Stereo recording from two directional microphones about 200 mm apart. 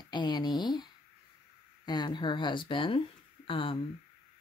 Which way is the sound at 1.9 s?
20° left (ahead or behind).